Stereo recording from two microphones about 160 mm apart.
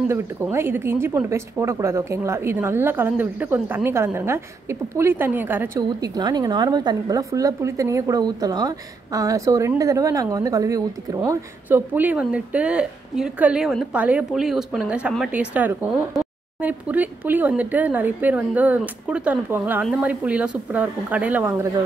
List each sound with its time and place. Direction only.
0.1 s a woman's voice: 15° right (ahead or behind)